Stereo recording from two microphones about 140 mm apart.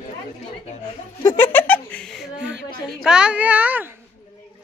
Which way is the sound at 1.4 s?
15° left (ahead or behind).